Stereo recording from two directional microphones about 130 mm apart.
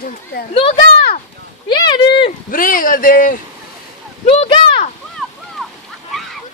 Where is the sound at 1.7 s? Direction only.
40° left (ahead or behind).